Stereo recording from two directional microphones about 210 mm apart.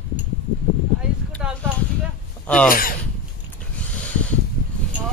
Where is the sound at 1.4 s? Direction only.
5° right (ahead or behind).